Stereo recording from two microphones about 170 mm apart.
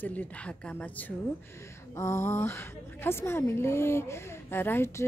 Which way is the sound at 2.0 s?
15° left (ahead or behind).